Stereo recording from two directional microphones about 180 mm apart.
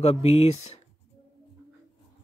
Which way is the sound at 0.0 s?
35° left (ahead or behind).